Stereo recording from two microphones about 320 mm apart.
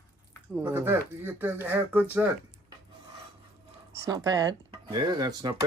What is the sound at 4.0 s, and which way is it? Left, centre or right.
Speech, centre.